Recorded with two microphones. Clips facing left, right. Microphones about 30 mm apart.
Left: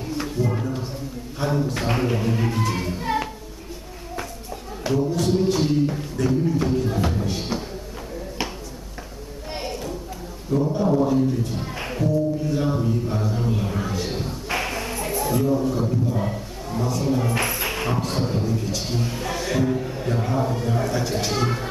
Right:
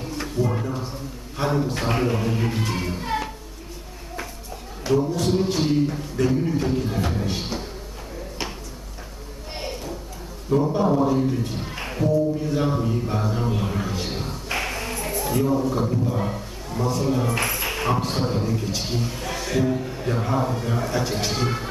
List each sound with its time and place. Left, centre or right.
0.2 s music: centre
1.7 s speech: centre
4.9 s speech: centre
5.2 s music: centre
9.5 s a sound: centre
10.5 s a man's voice: right
11.7 s music: centre
13.9 s a sound: centre
14.5 s a sound: centre
15.7 s speech: centre
17.3 s a man's voice: centre
19.0 s speech: centre